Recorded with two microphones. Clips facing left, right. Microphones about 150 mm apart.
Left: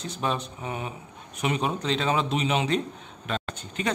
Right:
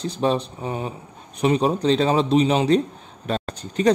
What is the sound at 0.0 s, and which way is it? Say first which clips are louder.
A man's voice: right 7 dB; 30° right (ahead or behind).